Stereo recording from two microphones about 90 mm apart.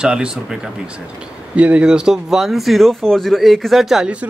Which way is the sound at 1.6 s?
15° right (ahead or behind).